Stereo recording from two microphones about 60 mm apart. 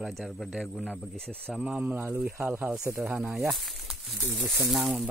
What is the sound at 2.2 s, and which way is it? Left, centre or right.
Speech, centre.